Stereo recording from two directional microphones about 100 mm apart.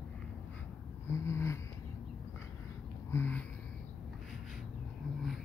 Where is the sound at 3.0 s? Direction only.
25° left (ahead or behind).